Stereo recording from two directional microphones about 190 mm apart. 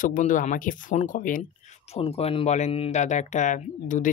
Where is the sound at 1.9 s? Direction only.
30° left (ahead or behind).